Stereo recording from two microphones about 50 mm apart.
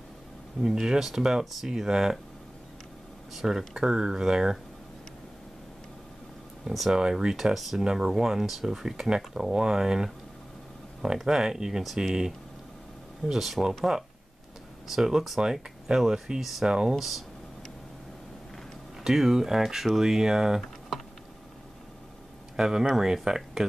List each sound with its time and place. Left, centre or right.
0.6 s speech: centre
3.3 s speech: centre
6.6 s speech: centre
7.0 s speech: centre
7.5 s speech: centre
14.9 s speech: centre
16.6 s speech: centre
16.9 s speech: centre
19.0 s speech: centre
22.6 s speech: centre